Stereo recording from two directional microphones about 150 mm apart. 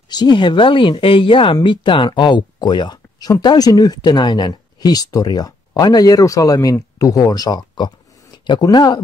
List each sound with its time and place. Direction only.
0.1 s speech: 30° left (ahead or behind)